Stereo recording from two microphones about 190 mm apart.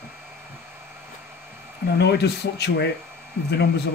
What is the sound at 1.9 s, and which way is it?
Speech, 60° left (ahead or behind).